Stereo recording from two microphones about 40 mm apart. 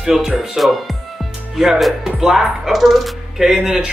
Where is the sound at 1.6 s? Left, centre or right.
Centre.